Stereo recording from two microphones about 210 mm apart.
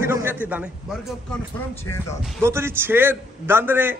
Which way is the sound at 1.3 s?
10° left (ahead or behind).